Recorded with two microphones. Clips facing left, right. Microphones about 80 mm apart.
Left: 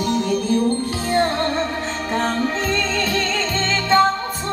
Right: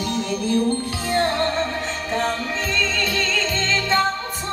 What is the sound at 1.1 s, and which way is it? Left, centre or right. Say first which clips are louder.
Music: left 1 dB; left.